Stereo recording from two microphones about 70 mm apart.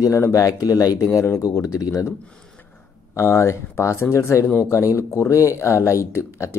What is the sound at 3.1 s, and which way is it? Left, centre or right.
Speech, left.